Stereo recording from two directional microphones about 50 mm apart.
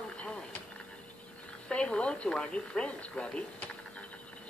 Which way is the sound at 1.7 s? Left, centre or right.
Left.